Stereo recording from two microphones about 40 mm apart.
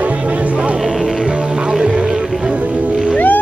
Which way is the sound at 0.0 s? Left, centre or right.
Right.